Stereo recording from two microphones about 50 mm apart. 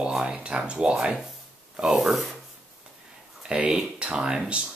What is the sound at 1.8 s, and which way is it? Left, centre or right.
Speech, centre.